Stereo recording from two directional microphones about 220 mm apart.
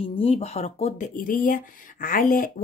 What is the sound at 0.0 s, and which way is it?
Speech, 25° left (ahead or behind).